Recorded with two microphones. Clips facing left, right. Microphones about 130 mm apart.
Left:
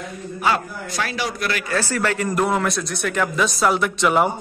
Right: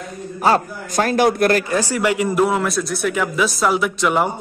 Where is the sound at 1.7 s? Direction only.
15° right (ahead or behind).